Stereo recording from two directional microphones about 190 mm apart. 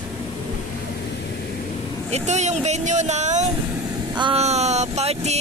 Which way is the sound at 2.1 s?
35° right (ahead or behind).